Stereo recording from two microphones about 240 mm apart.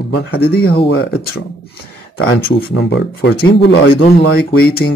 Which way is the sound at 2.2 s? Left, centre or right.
Left.